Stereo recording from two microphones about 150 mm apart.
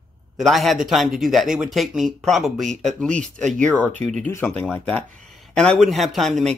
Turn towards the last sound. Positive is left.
turn(degrees=0)  # may be behind; listen again after turning